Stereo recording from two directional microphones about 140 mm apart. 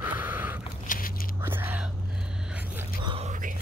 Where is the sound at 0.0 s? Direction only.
15° right (ahead or behind).